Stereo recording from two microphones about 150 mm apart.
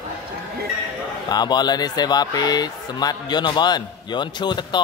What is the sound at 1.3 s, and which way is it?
Speech, 30° left (ahead or behind).